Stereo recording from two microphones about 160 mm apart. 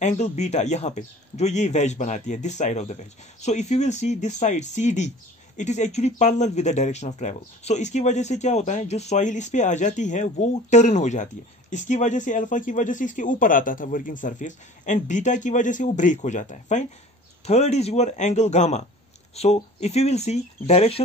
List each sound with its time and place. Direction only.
0.0 s speech: 45° left (ahead or behind)